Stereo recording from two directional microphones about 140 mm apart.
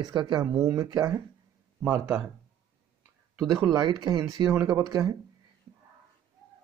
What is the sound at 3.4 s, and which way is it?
Speech, 25° right (ahead or behind).